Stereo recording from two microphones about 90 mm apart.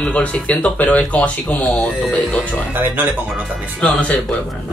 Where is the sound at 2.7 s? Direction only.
20° right (ahead or behind).